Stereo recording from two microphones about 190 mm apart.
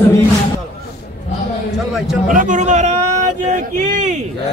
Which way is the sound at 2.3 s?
40° right (ahead or behind).